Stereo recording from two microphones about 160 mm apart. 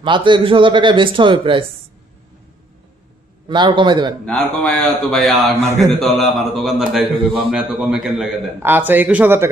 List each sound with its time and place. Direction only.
0.0 s speech: 30° right (ahead or behind)
3.4 s a man's voice: 30° right (ahead or behind)
4.3 s a man's voice: 5° left (ahead or behind); by 9.5 s 10° right (ahead or behind)